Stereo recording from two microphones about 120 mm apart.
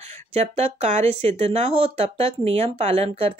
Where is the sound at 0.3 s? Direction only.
60° right (ahead or behind).